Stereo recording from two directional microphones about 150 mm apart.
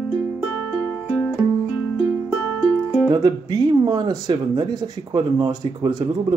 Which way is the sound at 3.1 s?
30° right (ahead or behind).